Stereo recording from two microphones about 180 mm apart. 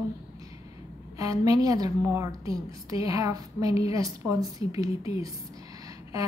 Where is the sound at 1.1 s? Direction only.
20° right (ahead or behind).